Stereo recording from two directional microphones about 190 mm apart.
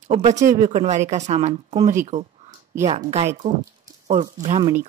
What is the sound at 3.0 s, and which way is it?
Speech, 35° right (ahead or behind).